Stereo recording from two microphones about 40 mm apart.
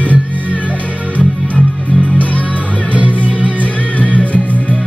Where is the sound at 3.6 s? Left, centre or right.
Left.